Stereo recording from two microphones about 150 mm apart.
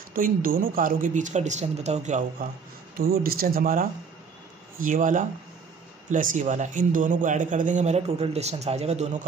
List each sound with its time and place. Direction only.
0.1 s a man's voice: 70° right (ahead or behind); by 2.5 s 55° right (ahead or behind)
3.0 s a man's voice: 85° right; by 9.2 s 50° right (ahead or behind)